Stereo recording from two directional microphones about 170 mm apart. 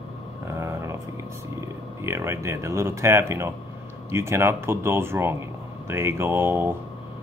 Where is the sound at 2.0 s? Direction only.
15° right (ahead or behind).